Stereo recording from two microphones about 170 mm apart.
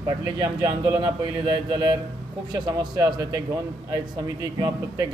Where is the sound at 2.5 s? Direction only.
25° right (ahead or behind).